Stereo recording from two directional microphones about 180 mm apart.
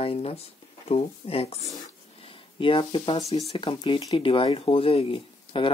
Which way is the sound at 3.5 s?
25° left (ahead or behind).